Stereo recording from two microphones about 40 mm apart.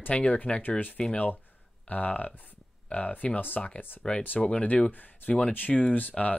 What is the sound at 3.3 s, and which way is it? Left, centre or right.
Speech, left.